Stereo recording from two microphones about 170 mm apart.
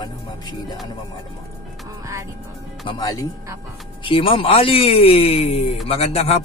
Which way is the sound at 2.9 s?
20° left (ahead or behind).